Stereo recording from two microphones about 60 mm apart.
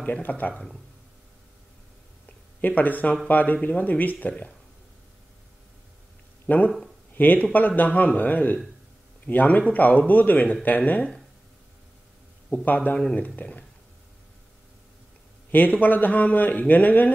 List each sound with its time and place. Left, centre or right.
0.0 s a man's voice: left
2.2 s a sound: left
3.3 s a man's voice: left
6.4 s a man's voice: left
12.6 s a man's voice: left
15.5 s a man's voice: left